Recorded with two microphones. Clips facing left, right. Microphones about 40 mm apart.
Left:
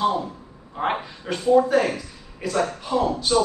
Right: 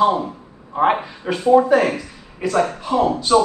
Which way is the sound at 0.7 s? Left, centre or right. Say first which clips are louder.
Right 8 dB; centre.